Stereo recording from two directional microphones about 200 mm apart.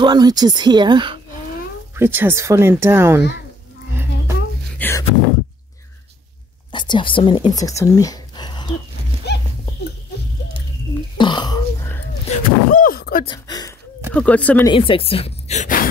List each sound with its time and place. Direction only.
0.0 s speech: 20° right (ahead or behind)
2.0 s speech: 10° right (ahead or behind)
4.7 s a sound: 10° left (ahead or behind)
6.7 s speech: 25° left (ahead or behind)
9.3 s horse: 55° left (ahead or behind)
11.1 s throat clearing: 25° left (ahead or behind)
12.3 s a sound: 40° left (ahead or behind)
13.2 s speech: 20° left (ahead or behind)
14.1 s speech: 5° left (ahead or behind)
14.7 s a woman's voice: 25° left (ahead or behind)